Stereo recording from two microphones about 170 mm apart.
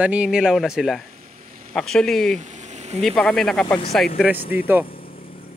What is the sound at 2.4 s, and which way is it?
Vehicle, 45° right (ahead or behind).